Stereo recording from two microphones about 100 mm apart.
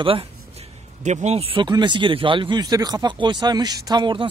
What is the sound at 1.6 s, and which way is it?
Speech, 50° right (ahead or behind).